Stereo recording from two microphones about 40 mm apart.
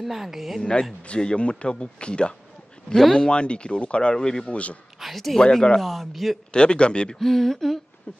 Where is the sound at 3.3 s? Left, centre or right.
Left.